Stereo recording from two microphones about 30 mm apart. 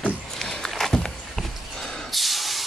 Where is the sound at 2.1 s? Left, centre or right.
Centre.